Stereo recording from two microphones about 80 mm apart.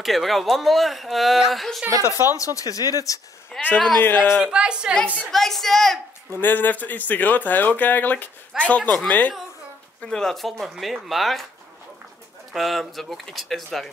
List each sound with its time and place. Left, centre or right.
0.0 s speech: centre
2.2 s speech: left
3.5 s speech: centre
4.0 s speech: left
4.5 s a woman's voice: centre
5.0 s speech: left
5.3 s speech: centre
6.3 s speech: left; by 11.4 s centre
12.5 s speech: centre